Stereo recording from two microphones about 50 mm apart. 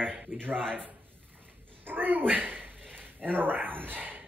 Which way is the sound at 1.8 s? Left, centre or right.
Right.